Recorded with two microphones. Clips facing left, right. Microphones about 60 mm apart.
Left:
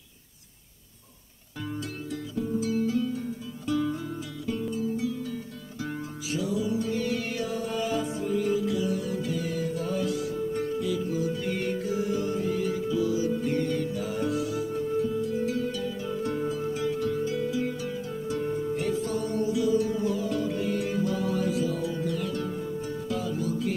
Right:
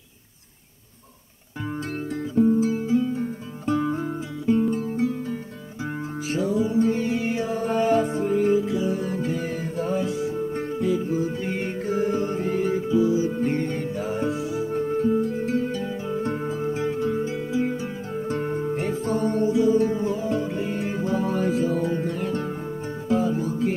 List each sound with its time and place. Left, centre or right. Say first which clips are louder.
2.0 s guitar: right 13 dB; right
4.7 s music: right 4 dB; right
6.2 s music: right 5 dB; right
14.7 s music: right 9 dB; right